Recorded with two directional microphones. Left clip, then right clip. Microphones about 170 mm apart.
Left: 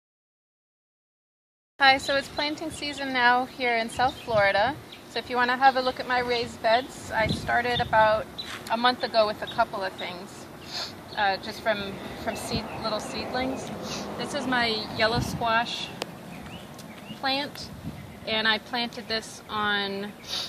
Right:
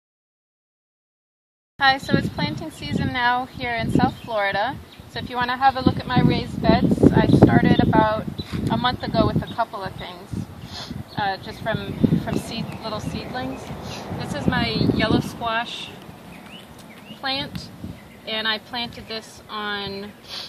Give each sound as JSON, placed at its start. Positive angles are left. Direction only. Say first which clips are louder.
{"t": 1.8, "sound": "speech", "louder": "right 1 dB", "side_deg": 25}
{"t": 17.2, "sound": "speech", "louder": "right 1 dB", "side_deg": 15}